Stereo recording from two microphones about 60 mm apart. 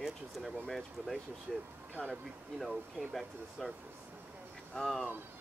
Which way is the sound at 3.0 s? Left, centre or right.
Centre.